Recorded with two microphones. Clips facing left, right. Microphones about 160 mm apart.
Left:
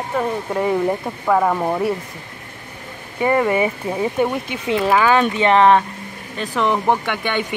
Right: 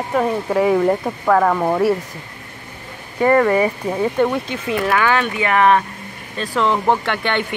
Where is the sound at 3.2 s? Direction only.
15° left (ahead or behind).